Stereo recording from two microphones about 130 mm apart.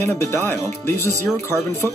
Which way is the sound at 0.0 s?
15° left (ahead or behind).